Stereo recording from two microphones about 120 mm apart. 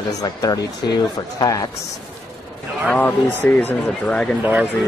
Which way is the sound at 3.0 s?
15° left (ahead or behind).